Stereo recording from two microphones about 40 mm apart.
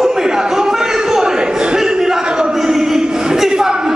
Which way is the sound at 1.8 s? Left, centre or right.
Centre.